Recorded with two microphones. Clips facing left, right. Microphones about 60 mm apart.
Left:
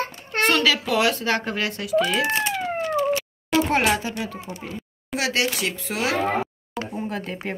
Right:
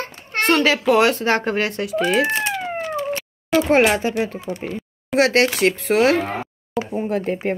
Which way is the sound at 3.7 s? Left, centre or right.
Right.